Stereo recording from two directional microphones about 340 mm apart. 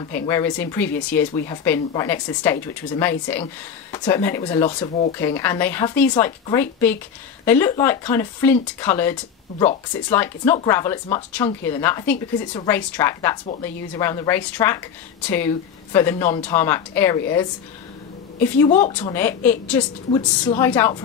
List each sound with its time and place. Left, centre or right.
0.1 s speech: centre
16.5 s speech: centre
18.7 s speech: centre
19.0 s speech: centre